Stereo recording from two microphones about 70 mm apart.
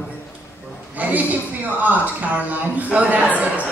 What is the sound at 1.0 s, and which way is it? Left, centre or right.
A man's voice, right.